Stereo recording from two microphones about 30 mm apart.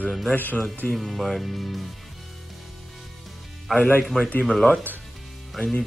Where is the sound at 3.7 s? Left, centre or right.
Centre.